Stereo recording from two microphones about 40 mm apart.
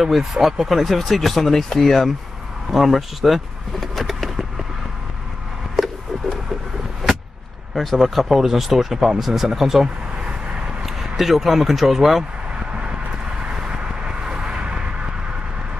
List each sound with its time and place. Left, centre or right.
0.0 s speech: centre
2.7 s speech: centre
7.7 s speech: centre
11.0 s speech: centre
13.6 s vehicle: right